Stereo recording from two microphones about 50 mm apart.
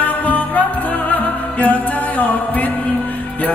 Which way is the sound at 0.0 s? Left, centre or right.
Left.